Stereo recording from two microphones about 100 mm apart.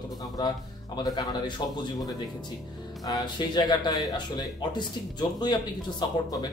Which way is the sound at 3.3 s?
45° left (ahead or behind).